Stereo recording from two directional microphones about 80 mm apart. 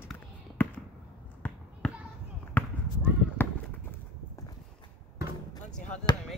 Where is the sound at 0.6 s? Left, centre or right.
Left.